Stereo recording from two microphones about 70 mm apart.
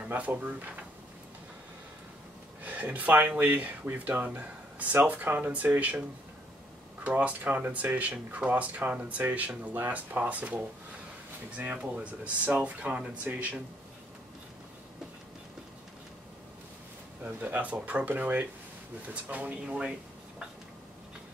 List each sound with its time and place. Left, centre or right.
0.0 s speech: right
2.6 s speech: right
17.2 s speech: right